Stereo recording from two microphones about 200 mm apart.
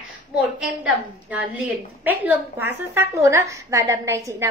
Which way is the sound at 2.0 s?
10° right (ahead or behind).